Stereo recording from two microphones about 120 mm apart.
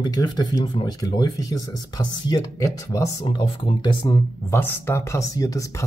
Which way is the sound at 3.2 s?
45° left (ahead or behind).